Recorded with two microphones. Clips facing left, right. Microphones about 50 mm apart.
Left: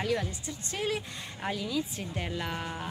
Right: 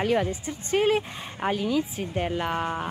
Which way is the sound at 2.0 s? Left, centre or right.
Right.